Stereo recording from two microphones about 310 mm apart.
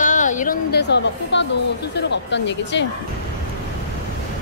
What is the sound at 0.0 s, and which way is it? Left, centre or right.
A woman's voice, left.